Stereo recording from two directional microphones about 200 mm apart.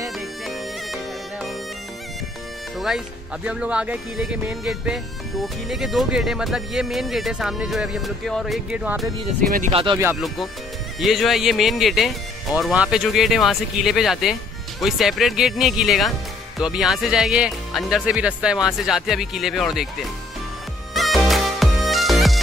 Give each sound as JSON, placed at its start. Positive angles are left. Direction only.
{"t": 3.4, "sound": "speech", "side_deg": -5}
{"t": 9.7, "sound": "speech", "side_deg": -30}
{"t": 10.2, "sound": "speech", "side_deg": 0}
{"t": 20.9, "sound": "music", "side_deg": 0}